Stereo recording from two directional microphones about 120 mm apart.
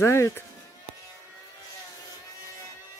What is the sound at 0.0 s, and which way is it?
Speech, 25° left (ahead or behind).